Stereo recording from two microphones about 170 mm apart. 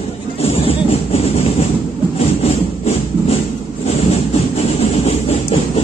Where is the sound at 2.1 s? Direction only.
35° left (ahead or behind).